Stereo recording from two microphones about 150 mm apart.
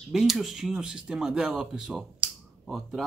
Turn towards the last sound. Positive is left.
turn(degrees=0)  # may be behind; listen again after turning